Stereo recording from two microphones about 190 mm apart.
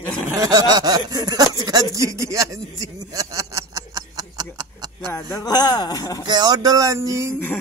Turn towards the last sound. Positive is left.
turn(degrees=-15)  # may be behind; listen again after turning